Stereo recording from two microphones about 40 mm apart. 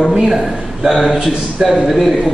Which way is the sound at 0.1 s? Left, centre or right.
Centre.